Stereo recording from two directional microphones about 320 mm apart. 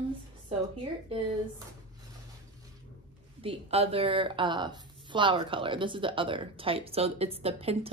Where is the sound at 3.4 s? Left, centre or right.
Centre.